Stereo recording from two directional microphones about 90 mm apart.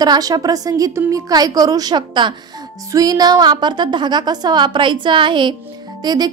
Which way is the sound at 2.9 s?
45° right (ahead or behind).